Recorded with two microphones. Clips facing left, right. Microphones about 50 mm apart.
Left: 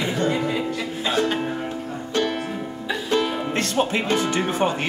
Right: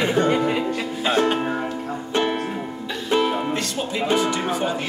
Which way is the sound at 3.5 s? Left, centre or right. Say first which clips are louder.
Left 4 dB; left.